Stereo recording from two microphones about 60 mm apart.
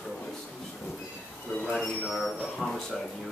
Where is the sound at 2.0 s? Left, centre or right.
Centre.